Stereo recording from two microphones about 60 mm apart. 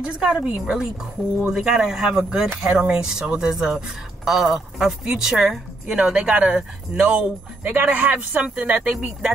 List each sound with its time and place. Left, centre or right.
0.0 s speech: centre
7.6 s speech: right; by 9.3 s centre